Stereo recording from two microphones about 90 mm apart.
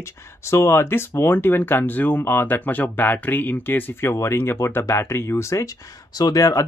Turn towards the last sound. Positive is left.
turn(degrees=40)  # may be behind; listen again after turning